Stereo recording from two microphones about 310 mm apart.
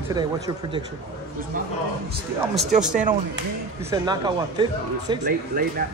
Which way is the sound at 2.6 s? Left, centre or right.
Right.